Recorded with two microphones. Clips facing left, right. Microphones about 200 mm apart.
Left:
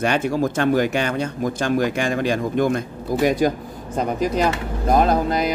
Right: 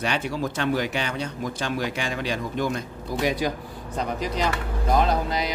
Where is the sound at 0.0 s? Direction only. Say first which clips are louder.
Left 7 dB; 50° left (ahead or behind).